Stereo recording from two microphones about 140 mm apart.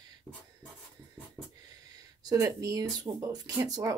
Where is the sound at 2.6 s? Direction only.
25° right (ahead or behind).